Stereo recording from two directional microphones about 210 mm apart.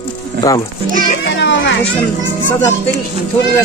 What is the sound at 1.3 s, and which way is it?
Children playing, 60° left (ahead or behind).